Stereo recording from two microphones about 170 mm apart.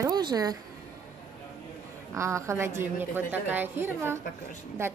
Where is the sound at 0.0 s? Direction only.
25° right (ahead or behind).